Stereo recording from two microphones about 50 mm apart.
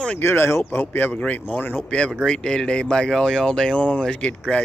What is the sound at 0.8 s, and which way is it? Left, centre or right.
Speech, left.